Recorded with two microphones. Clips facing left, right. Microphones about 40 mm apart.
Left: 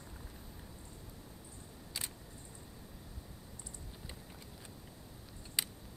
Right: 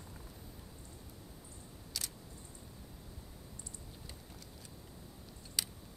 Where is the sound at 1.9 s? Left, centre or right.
Left.